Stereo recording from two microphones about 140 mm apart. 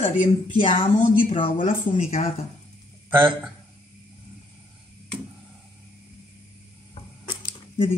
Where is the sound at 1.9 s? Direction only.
45° left (ahead or behind).